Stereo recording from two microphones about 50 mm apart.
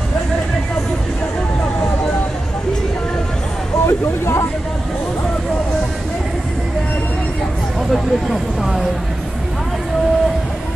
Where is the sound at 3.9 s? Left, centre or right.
Left.